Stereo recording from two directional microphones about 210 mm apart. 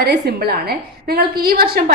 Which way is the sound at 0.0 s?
50° right (ahead or behind).